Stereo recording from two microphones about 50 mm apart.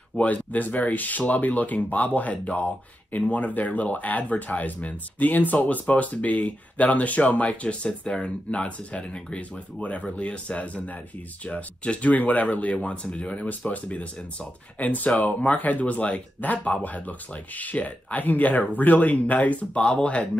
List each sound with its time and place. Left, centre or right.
0.2 s speech: left